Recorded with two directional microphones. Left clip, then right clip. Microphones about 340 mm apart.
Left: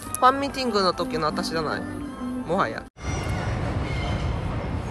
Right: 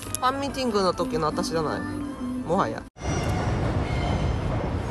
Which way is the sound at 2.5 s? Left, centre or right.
Centre.